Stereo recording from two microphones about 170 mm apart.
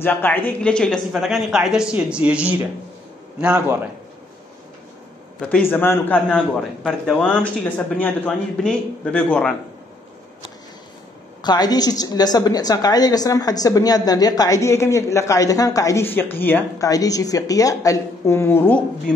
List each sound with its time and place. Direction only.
0.0 s a man's voice: 10° left (ahead or behind); by 3.9 s 10° right (ahead or behind)
5.7 s a man's voice: 10° left (ahead or behind)
11.4 s a woman's voice: 25° left (ahead or behind)